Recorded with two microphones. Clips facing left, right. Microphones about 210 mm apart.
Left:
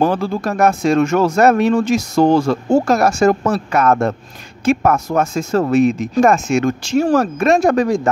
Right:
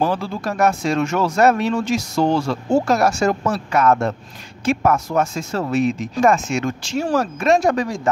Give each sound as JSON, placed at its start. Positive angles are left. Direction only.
{"t": 0.0, "sound": "speech", "side_deg": 50}